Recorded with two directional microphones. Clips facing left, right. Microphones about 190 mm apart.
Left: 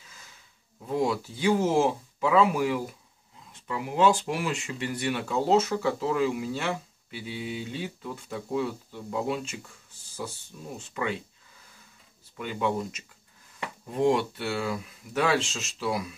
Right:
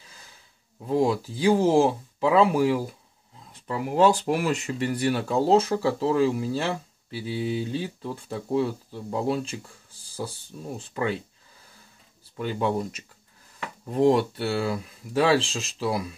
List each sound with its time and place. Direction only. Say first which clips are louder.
0.8 s speech: right 4 dB; 30° right (ahead or behind)
10.8 s speech: right 3 dB; 35° right (ahead or behind)
12.4 s speech: right 3 dB; 35° right (ahead or behind)
14.0 s speech: right 4 dB; 35° right (ahead or behind)